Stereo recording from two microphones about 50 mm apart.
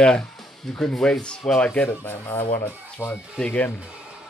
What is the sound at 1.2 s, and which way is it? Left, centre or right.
Speech, centre.